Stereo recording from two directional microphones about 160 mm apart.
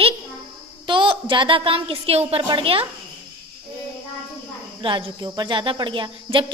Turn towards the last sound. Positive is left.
turn(degrees=-30)  # may be behind; listen again after turning